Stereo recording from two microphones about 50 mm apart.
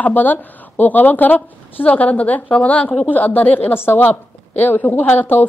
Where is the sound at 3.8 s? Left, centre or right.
Left.